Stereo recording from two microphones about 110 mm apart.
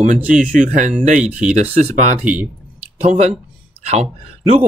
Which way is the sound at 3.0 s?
90° right.